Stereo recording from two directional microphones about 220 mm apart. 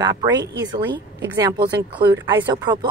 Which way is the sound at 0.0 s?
15° right (ahead or behind).